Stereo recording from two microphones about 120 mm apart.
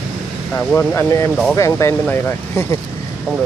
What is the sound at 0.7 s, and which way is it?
Speech, 25° left (ahead or behind).